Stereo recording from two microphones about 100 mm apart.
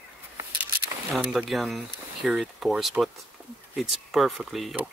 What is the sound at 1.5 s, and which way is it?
Speech, centre (ahead or behind).